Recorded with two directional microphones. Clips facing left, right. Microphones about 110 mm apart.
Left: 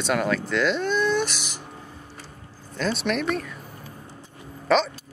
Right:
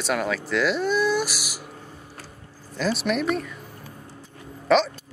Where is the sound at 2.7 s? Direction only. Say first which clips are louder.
Right 1 dB; 5° right (ahead or behind).